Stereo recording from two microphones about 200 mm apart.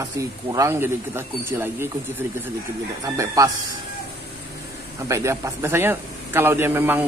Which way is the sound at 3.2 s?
15° right (ahead or behind).